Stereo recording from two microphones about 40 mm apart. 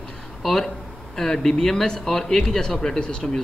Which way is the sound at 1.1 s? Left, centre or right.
Centre.